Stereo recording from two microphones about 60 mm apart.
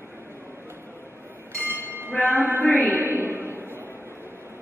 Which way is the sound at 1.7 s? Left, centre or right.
Right.